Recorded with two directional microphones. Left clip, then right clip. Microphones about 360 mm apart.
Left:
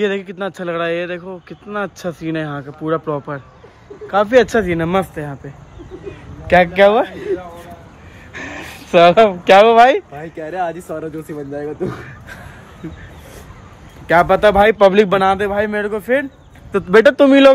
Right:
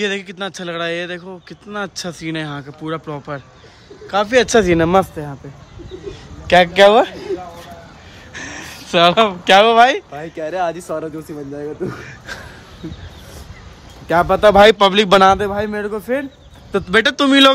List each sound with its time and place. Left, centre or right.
0.0 s speech: centre
4.6 s speech: centre
5.1 s speech: centre
6.4 s speech: centre
8.3 s speech: centre
10.1 s speech: centre
14.0 s speech: centre
14.5 s speech: centre
14.8 s speech: centre
15.0 s speech: centre